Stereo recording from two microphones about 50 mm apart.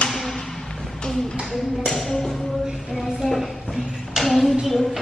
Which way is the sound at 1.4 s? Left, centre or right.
Centre.